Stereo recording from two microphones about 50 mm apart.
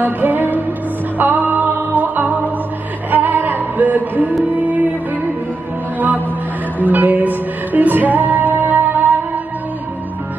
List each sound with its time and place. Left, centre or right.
0.0 s music: right
5.9 s music: right